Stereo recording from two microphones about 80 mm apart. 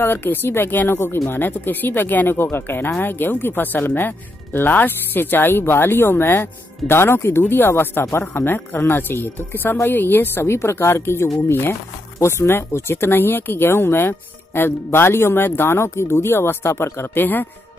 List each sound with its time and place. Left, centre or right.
0.0 s speech: left